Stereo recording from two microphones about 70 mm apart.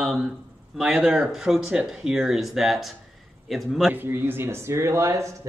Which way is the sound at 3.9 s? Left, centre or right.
Right.